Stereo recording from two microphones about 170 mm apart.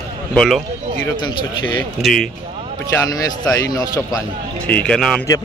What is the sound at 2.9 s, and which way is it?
Speech, 20° left (ahead or behind).